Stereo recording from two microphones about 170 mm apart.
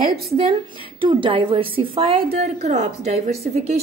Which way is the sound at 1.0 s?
30° right (ahead or behind).